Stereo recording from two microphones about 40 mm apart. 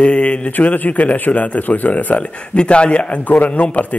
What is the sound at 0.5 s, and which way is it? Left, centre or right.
Speech, left.